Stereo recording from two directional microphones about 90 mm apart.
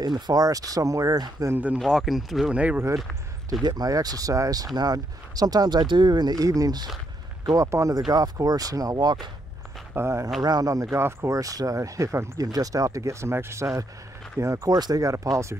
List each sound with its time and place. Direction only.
0.0 s speech: 45° right (ahead or behind)
1.5 s speech: 20° right (ahead or behind)
1.8 s speech: centre (ahead or behind)
2.5 s speech: 15° right (ahead or behind)
3.6 s speech: 45° right (ahead or behind)
7.6 s speech: 35° right (ahead or behind)
8.1 s speech: 45° right (ahead or behind)
9.9 s speech: 30° right (ahead or behind)
10.4 s speech: 45° right (ahead or behind)
10.9 s speech: 30° right (ahead or behind)